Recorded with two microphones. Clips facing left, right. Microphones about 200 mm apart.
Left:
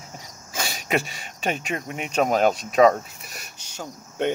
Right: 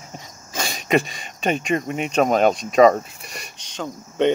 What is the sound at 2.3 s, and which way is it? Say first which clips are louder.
Speech: right 2 dB; 5° left (ahead or behind).